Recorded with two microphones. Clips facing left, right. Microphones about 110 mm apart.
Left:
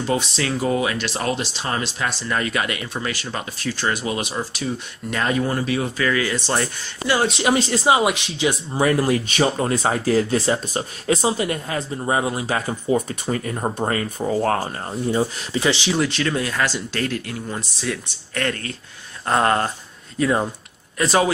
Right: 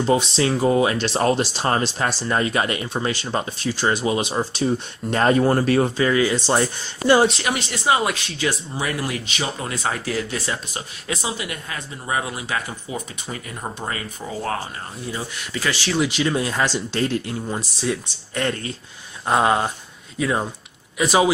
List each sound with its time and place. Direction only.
0.0 s speech: 25° right (ahead or behind); by 5.9 s 40° right (ahead or behind)
5.9 s speech: 25° right (ahead or behind)
7.4 s speech: 30° left (ahead or behind)
7.9 s speech: 20° left (ahead or behind)
8.7 s speech: 40° left (ahead or behind)
12.9 s speech: 45° left (ahead or behind)
15.0 s speech: 30° left (ahead or behind)
16.1 s speech: 15° right (ahead or behind)